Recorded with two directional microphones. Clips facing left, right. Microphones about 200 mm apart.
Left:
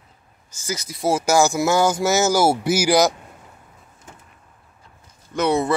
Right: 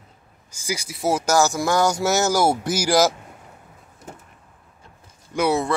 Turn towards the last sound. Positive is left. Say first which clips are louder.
# left 1 dB
turn(degrees=-10)  # may be behind; listen again after turning